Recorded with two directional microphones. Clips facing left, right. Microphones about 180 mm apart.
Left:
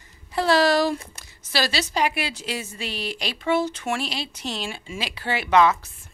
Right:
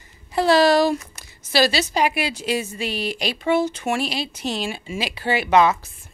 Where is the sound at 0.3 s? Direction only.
15° right (ahead or behind).